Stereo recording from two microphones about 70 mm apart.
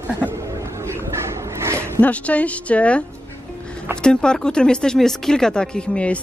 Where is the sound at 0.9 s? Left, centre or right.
Right.